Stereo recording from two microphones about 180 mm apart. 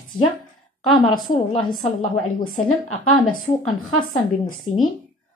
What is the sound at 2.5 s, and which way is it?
Speech, 40° left (ahead or behind).